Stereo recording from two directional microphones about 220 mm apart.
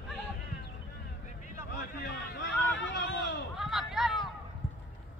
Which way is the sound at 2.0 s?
50° left (ahead or behind).